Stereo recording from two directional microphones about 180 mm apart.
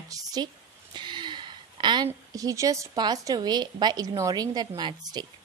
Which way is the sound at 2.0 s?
20° right (ahead or behind).